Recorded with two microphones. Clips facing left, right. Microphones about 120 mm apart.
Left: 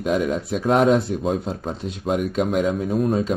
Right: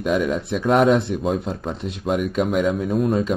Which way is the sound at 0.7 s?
Centre (ahead or behind).